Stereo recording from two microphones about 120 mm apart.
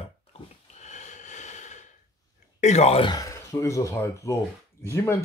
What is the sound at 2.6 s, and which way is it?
Speech, 65° left (ahead or behind).